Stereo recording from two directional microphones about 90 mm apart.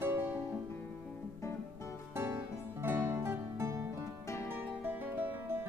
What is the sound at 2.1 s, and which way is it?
Music, 25° right (ahead or behind).